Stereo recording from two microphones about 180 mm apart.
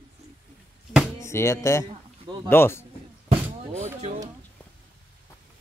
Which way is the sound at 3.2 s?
40° right (ahead or behind).